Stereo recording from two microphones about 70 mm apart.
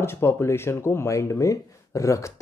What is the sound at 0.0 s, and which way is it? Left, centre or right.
Speech, left.